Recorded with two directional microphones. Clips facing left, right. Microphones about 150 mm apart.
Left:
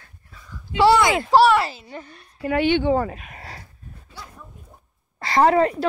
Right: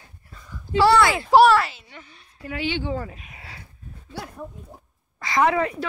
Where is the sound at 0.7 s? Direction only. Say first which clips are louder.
Left 1 dB; 20° left (ahead or behind).